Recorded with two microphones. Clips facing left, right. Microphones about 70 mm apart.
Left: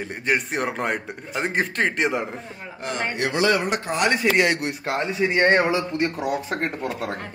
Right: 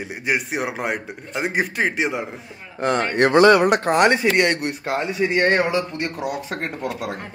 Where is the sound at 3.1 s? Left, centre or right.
Right.